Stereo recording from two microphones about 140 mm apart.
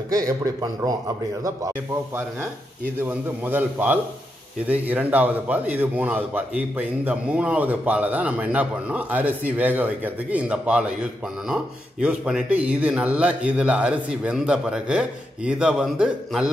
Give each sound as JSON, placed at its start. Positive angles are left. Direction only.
{"t": 0.1, "sound": "a man's voice", "side_deg": -25}
{"t": 2.8, "sound": "a man's voice", "side_deg": -10}